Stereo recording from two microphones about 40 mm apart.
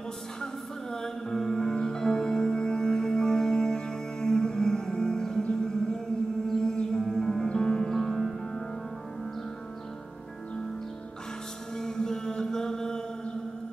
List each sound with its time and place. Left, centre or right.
1.0 s music: centre
7.4 s music: left
11.7 s music: centre